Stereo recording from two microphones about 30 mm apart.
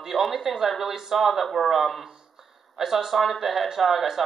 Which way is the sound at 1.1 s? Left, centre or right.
Centre.